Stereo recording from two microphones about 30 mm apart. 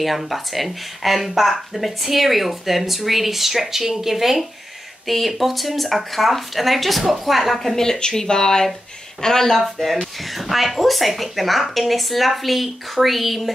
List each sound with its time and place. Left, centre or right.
0.0 s a woman's voice: centre
5.0 s a woman's voice: centre
7.7 s speech: centre
9.6 s a woman's voice: centre